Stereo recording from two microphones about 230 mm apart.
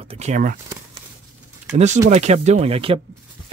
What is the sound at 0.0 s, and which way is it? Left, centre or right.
Speech, right.